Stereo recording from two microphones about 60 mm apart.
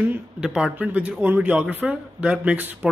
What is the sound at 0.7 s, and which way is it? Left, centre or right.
Speech, right.